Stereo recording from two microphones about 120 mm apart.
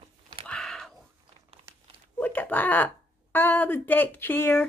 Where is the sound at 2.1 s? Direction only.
15° left (ahead or behind).